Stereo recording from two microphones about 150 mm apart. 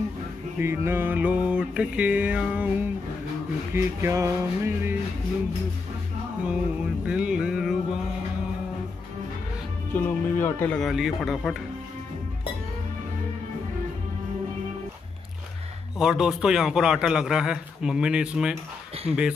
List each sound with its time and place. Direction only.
0.6 s music: 15° right (ahead or behind)
3.7 s music: 15° right (ahead or behind)
7.1 s music: 5° right (ahead or behind)
9.9 s a man's voice: 15° left (ahead or behind); by 11.5 s centre (ahead or behind)
16.0 s a man's voice: 5° right (ahead or behind)
19.1 s music: 10° right (ahead or behind)